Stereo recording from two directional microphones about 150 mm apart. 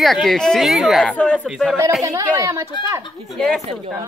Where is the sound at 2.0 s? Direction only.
20° right (ahead or behind).